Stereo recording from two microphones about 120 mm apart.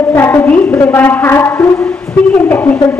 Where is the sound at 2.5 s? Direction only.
15° left (ahead or behind).